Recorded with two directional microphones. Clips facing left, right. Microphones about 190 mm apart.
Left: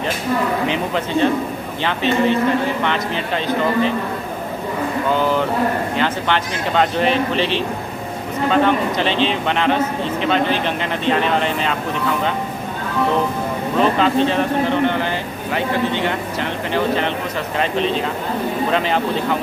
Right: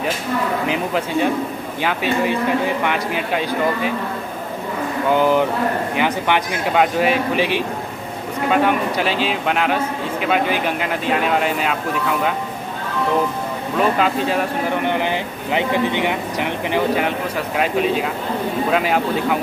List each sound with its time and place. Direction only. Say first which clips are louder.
0.7 s speech: even; 10° right (ahead or behind)
5.1 s speech: right 3 dB; 15° right (ahead or behind)
13.7 s speech: left 2 dB; 5° right (ahead or behind)